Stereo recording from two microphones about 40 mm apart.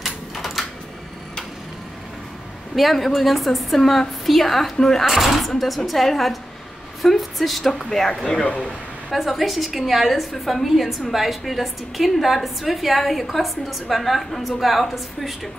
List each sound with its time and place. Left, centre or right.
0.0 s a sound: centre
2.7 s a woman's voice: centre
8.5 s speech: left
9.1 s a woman's voice: centre